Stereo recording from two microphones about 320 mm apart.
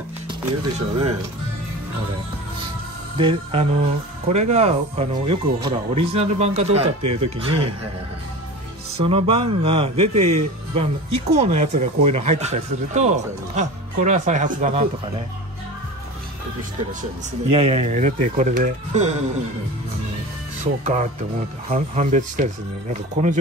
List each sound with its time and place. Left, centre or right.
0.3 s speech: centre
3.2 s music: centre
4.3 s speech: right
7.3 s music: centre
8.9 s speech: centre
17.5 s speech: centre
20.8 s speech: right